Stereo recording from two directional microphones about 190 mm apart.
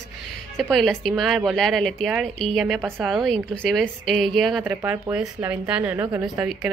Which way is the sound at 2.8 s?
10° right (ahead or behind).